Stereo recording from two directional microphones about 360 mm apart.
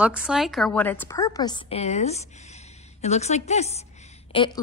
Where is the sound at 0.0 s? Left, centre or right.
Centre.